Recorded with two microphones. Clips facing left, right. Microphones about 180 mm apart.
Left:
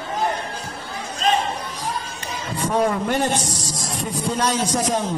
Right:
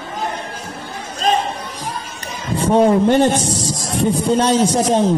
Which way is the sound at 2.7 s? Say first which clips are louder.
Right 8 dB; 30° right (ahead or behind).